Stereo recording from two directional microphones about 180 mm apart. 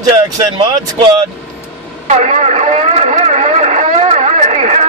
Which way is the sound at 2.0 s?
40° right (ahead or behind).